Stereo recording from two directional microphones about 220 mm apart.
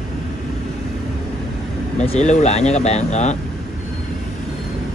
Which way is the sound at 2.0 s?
30° left (ahead or behind).